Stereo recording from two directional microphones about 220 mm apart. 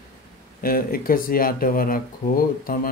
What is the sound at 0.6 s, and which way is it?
Speech, 40° left (ahead or behind).